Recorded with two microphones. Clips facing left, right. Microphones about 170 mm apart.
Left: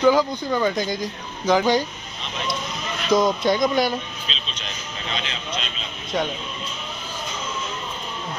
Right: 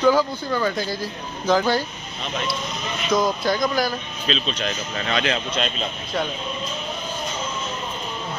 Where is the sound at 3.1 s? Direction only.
25° left (ahead or behind).